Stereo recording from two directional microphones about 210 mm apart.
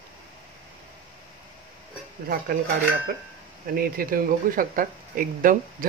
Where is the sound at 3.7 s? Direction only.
45° right (ahead or behind).